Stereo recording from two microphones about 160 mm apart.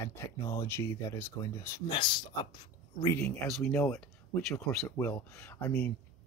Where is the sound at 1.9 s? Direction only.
30° left (ahead or behind).